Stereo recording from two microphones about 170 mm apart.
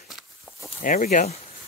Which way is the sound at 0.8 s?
50° left (ahead or behind).